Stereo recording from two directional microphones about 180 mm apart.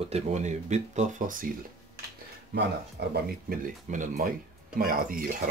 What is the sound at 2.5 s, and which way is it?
Speech, 65° right (ahead or behind).